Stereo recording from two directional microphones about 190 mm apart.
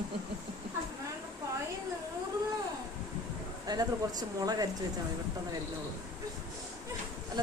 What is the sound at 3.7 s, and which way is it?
Speech, 20° right (ahead or behind).